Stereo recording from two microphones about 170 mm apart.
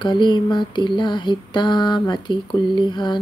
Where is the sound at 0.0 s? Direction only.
25° left (ahead or behind).